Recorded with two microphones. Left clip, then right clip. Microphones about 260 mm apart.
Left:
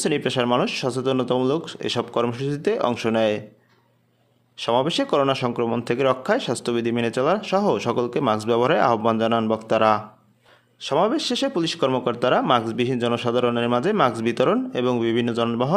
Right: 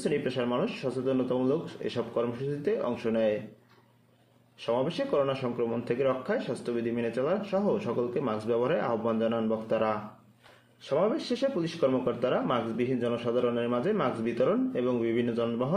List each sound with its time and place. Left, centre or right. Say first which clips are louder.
0.0 s speech: left 7 dB; left
4.6 s speech: left 8 dB; left